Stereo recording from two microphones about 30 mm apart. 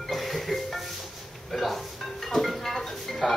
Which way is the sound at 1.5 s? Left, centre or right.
Centre.